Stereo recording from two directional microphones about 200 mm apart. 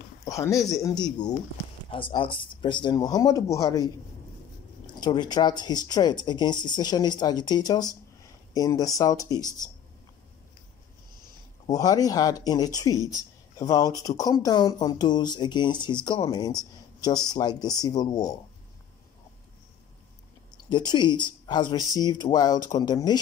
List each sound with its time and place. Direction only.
0.2 s speech: 15° left (ahead or behind)
11.6 s speech: 20° left (ahead or behind)
20.5 s speech: 20° left (ahead or behind)